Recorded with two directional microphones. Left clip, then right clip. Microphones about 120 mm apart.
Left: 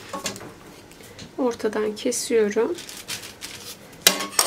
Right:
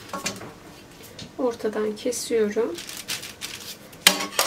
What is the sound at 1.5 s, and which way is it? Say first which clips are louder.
Speech: left 2 dB; 35° left (ahead or behind).